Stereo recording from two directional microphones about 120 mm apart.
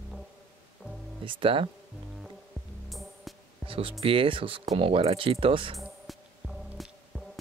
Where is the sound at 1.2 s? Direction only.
45° right (ahead or behind).